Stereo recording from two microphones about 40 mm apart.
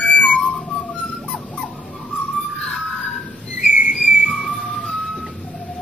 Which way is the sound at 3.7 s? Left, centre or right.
Centre.